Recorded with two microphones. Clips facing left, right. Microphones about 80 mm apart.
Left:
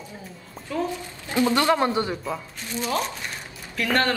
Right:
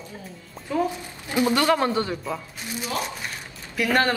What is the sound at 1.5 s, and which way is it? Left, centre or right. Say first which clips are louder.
Speech: even; centre.